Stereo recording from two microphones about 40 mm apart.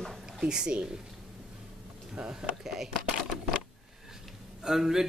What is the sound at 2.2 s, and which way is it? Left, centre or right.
Speech, centre.